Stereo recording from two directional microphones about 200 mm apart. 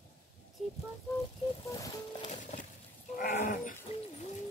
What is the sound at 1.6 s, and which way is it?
Music, 15° left (ahead or behind).